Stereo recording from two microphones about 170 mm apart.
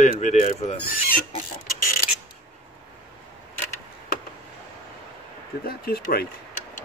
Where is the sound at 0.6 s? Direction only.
45° left (ahead or behind).